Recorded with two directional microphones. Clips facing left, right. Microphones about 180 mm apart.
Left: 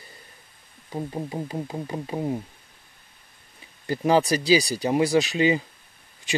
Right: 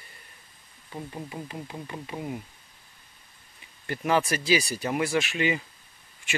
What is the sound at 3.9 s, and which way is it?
Speech, 35° left (ahead or behind).